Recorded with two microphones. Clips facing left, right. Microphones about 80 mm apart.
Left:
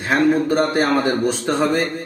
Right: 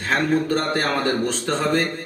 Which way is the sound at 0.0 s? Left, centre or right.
Centre.